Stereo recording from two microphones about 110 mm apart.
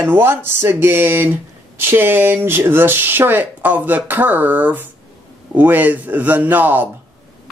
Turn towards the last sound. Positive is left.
turn(degrees=-15)  # may be behind; listen again after turning